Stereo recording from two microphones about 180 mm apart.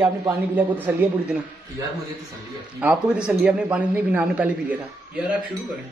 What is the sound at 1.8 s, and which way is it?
Speech, 20° right (ahead or behind).